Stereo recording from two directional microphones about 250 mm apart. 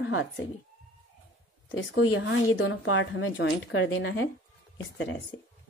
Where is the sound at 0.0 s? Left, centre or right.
Left.